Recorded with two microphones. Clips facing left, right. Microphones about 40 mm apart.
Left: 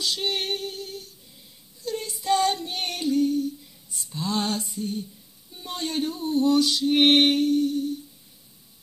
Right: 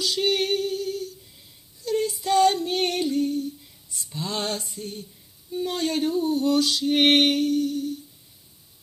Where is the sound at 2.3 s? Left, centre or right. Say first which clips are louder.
Right 3 dB; centre.